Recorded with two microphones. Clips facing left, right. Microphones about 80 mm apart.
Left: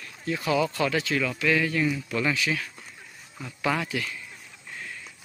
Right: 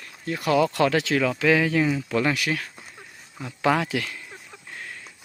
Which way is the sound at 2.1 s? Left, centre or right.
Right.